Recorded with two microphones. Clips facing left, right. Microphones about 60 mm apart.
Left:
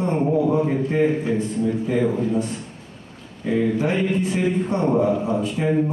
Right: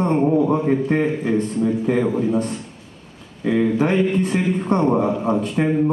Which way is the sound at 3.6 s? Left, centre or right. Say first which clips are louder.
Right 3 dB; right.